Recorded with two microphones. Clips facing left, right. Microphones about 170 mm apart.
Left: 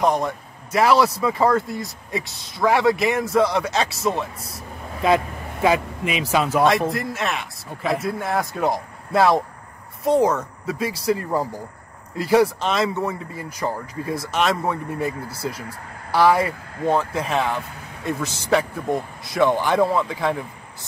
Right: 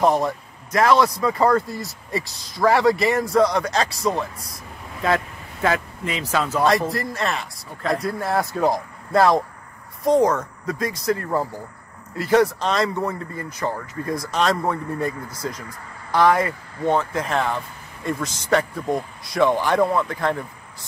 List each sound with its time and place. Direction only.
0.0 s speech: centre (ahead or behind)
5.0 s speech: 15° left (ahead or behind)
6.9 s speech: centre (ahead or behind)